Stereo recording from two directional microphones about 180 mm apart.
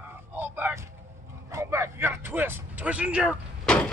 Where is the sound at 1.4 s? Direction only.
15° right (ahead or behind).